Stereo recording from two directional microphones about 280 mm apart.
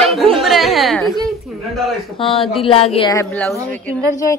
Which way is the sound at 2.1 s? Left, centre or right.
Centre.